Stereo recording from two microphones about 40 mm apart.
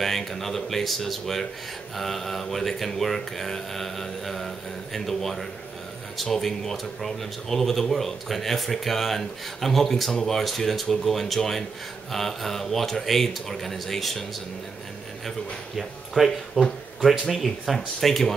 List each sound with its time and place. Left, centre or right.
0.0 s speech: centre
15.2 s speech: centre
16.3 s speech: centre
17.2 s speech: centre